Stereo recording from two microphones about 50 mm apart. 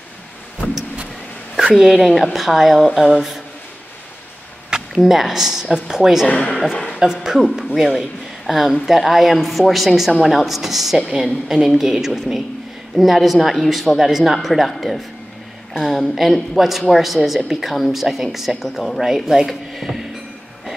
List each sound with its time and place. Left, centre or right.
1.9 s speech: centre
4.6 s a sound: centre
5.0 s speech: centre
6.2 s speech: left
7.0 s speech: centre